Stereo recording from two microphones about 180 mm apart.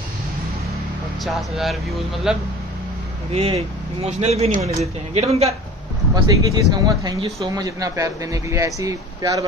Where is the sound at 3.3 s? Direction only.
35° right (ahead or behind).